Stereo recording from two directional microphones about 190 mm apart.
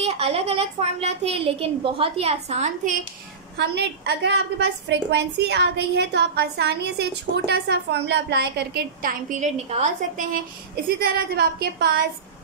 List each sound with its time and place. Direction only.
0.0 s a woman's voice: 30° right (ahead or behind)
3.5 s a woman's voice: 60° right (ahead or behind); by 10.4 s 40° right (ahead or behind)
11.0 s a woman's voice: 55° right (ahead or behind)